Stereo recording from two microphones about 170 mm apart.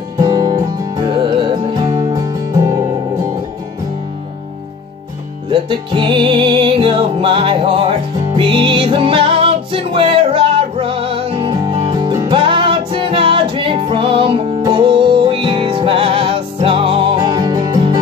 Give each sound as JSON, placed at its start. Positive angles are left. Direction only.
{"t": 0.2, "sound": "music", "side_deg": -20}
{"t": 5.5, "sound": "music", "side_deg": -30}
{"t": 12.1, "sound": "music", "side_deg": -20}
{"t": 12.4, "sound": "music", "side_deg": -30}